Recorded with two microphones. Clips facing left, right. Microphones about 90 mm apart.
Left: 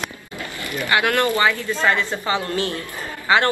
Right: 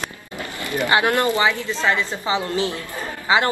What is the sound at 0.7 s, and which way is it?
A woman's voice, 20° right (ahead or behind).